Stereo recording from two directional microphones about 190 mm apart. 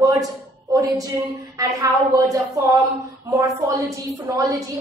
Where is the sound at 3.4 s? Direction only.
15° right (ahead or behind).